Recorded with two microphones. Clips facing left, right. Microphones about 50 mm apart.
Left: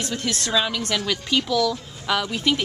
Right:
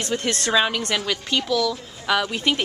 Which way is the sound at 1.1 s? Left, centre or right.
Centre.